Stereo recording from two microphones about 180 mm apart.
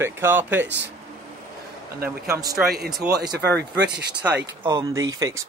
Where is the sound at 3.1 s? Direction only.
65° right (ahead or behind).